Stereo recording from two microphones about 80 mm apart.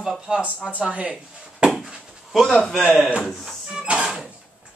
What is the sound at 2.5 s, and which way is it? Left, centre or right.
Speech, centre.